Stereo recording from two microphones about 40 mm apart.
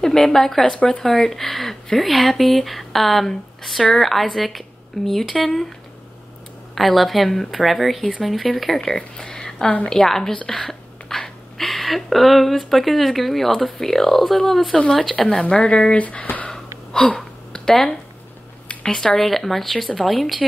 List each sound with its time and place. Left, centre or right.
0.0 s speech: centre
6.7 s speech: centre
8.8 s a sound: centre
9.8 s speech: centre
15.5 s speech: left
16.0 s speech: left
16.4 s a sound: centre
18.7 s speech: left
19.3 s speech: centre